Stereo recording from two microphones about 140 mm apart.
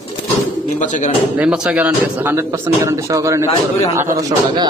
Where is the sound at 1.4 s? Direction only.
10° right (ahead or behind).